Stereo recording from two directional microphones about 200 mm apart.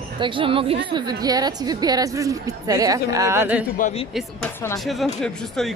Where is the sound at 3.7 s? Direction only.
40° left (ahead or behind).